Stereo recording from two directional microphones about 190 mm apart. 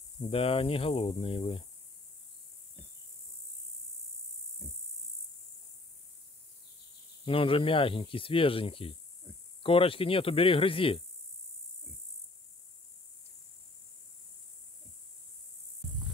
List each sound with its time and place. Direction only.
0.2 s speech: 30° left (ahead or behind)
7.2 s speech: 30° left (ahead or behind)